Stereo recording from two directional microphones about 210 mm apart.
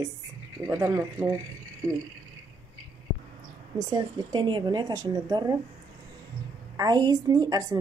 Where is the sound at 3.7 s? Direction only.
20° right (ahead or behind).